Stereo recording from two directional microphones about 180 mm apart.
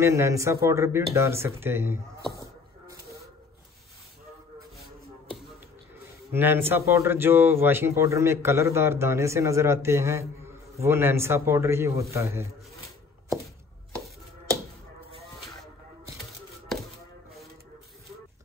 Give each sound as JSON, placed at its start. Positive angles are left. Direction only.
{"t": 0.0, "sound": "speech", "side_deg": -15}
{"t": 2.3, "sound": "a sound", "side_deg": -20}
{"t": 6.3, "sound": "speech", "side_deg": -10}